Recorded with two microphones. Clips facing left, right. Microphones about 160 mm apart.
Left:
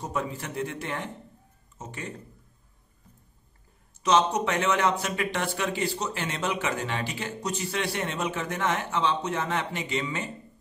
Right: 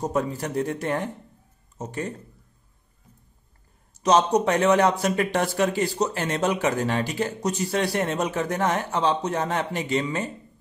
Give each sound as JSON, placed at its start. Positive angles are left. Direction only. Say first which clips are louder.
{"t": 0.0, "sound": "speech", "louder": "right 6 dB", "side_deg": -40}
{"t": 4.0, "sound": "speech", "louder": "right 4 dB", "side_deg": -40}